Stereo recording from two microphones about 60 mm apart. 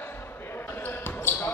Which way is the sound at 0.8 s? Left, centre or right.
Left.